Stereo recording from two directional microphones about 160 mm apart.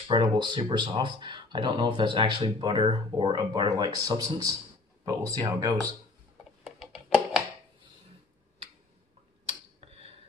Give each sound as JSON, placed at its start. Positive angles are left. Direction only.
{"t": 0.1, "sound": "speech", "side_deg": -30}
{"t": 6.6, "sound": "music", "side_deg": 0}
{"t": 9.5, "sound": "tick-tock", "side_deg": -40}